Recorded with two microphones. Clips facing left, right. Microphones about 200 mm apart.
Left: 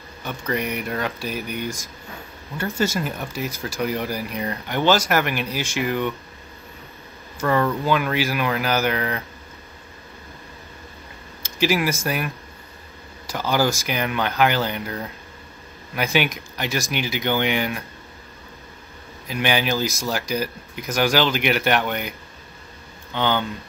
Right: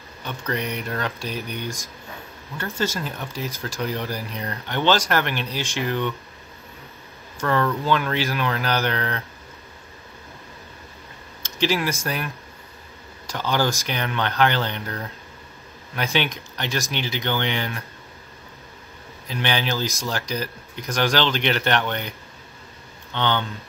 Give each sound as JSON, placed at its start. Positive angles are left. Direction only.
{"t": 0.2, "sound": "speech", "side_deg": 10}
{"t": 7.3, "sound": "speech", "side_deg": 10}
{"t": 11.4, "sound": "speech", "side_deg": 10}
{"t": 13.3, "sound": "speech", "side_deg": 10}
{"t": 19.2, "sound": "speech", "side_deg": 10}
{"t": 23.1, "sound": "speech", "side_deg": 10}